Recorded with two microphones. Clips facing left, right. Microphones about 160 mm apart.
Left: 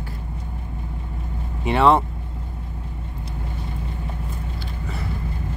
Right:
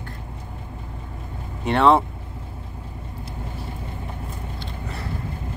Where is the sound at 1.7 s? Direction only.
Centre (ahead or behind).